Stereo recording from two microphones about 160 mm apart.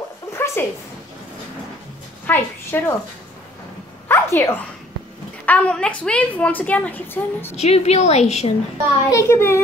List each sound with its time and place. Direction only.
0.3 s a sound: 15° left (ahead or behind)
2.2 s a woman's voice: 10° left (ahead or behind)
4.1 s a sound: 15° left (ahead or behind)
5.4 s a woman's voice: 10° left (ahead or behind)
7.5 s a woman's voice: 45° left (ahead or behind)
9.1 s a woman's voice: 15° left (ahead or behind)